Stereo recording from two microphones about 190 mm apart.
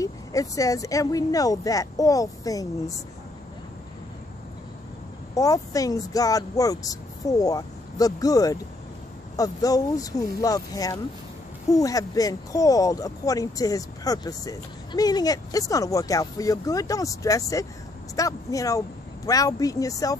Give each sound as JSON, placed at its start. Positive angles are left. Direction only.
{"t": 0.0, "sound": "speech", "side_deg": 15}
{"t": 5.3, "sound": "speech", "side_deg": 20}